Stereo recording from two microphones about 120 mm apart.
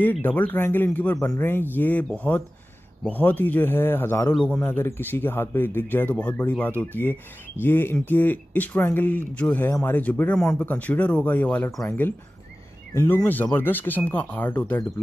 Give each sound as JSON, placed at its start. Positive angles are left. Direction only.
{"t": 0.0, "sound": "speech", "side_deg": 15}
{"t": 4.3, "sound": "speech", "side_deg": 10}
{"t": 4.6, "sound": "speech", "side_deg": 20}
{"t": 9.7, "sound": "speech", "side_deg": 25}
{"t": 9.9, "sound": "speech", "side_deg": 15}